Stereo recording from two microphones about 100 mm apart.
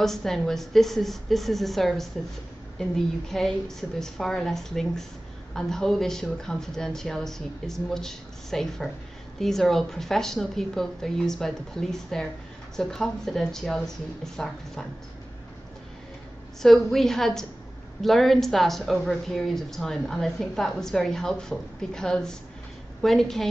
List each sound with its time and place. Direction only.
0.0 s a woman's voice: 5° left (ahead or behind)
16.6 s a woman's voice: centre (ahead or behind)